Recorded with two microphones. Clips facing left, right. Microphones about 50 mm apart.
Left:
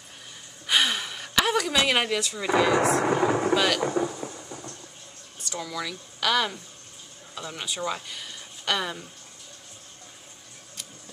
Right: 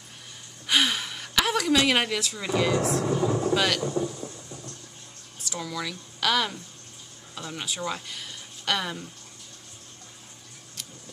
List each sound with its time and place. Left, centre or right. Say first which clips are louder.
0.7 s gasp: even; centre
3.0 s thunder: left 3 dB; left
3.5 s speech: left 1 dB; centre
3.8 s speech: left 2 dB; left
4.1 s thunder: left 2 dB; left
5.4 s speech: even; centre